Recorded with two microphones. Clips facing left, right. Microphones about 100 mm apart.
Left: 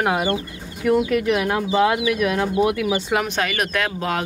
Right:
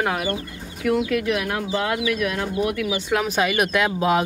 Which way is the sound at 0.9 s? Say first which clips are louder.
Left 3 dB; 30° left (ahead or behind).